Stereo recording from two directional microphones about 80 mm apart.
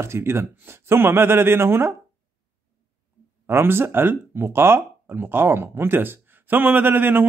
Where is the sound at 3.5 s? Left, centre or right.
Right.